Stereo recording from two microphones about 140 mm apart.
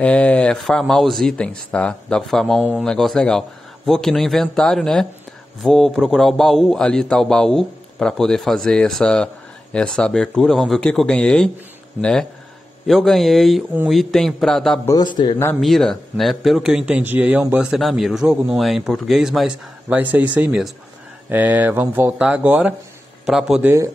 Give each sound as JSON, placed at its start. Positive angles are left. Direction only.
{"t": 0.0, "sound": "a man's voice", "side_deg": 10}
{"t": 14.9, "sound": "a man's voice", "side_deg": 30}
{"t": 15.6, "sound": "a man's voice", "side_deg": 0}